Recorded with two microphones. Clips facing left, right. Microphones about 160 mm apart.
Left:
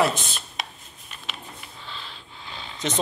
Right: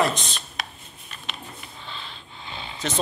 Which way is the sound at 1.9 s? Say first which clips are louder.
Right 1 dB; centre (ahead or behind).